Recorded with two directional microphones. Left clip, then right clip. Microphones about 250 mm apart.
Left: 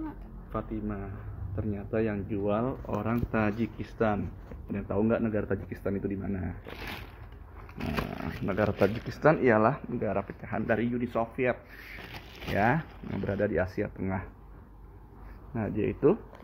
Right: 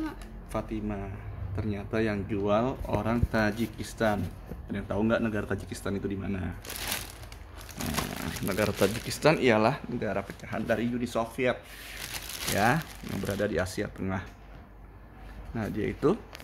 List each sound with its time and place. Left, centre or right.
0.5 s speech: centre
8.2 s speech: centre
12.5 s speech: centre
15.5 s speech: centre